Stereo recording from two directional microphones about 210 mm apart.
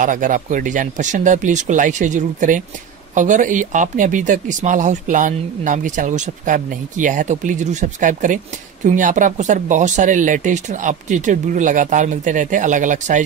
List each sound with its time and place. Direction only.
0.0 s speech: 40° right (ahead or behind)